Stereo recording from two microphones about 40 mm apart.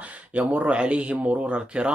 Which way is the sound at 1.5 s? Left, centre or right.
Right.